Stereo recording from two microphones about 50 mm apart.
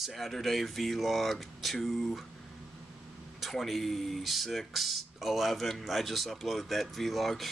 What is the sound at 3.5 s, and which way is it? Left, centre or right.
Speech, centre.